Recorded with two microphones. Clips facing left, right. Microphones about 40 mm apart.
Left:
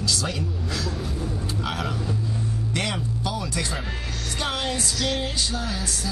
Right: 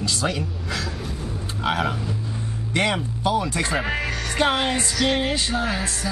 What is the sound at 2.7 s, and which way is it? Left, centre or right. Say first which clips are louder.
Speech: right 8 dB; right.